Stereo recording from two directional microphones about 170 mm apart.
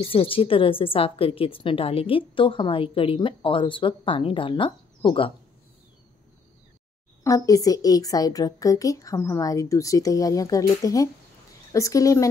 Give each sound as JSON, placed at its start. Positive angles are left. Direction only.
{"t": 0.0, "sound": "a woman's voice", "side_deg": 30}
{"t": 7.2, "sound": "a woman's voice", "side_deg": 20}